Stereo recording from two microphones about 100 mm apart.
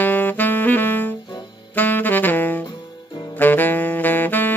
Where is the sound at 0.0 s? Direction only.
20° left (ahead or behind).